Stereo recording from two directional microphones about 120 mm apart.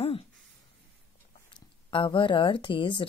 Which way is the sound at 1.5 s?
45° left (ahead or behind).